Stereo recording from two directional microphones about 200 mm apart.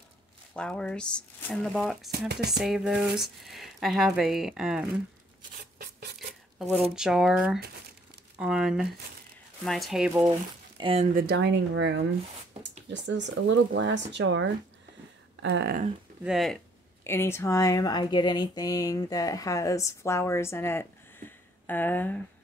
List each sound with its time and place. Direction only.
0.6 s speech: 5° left (ahead or behind)
6.1 s a sound: 5° right (ahead or behind)
7.0 s speech: 5° right (ahead or behind)
10.8 s speech: 30° right (ahead or behind)
11.1 s speech: 55° right (ahead or behind)
16.3 s speech: centre (ahead or behind)
17.0 s speech: 10° left (ahead or behind)